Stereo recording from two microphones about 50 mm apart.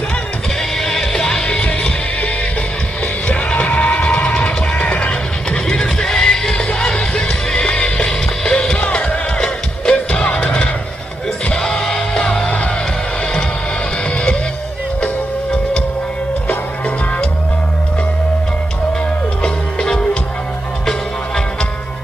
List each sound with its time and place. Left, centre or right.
0.7 s music: centre; by 2.3 s left
3.3 s music: left
5.7 s music: centre
8.7 s music: left
9.4 s music: centre
10.2 s music: left
11.5 s music: centre
19.4 s music: centre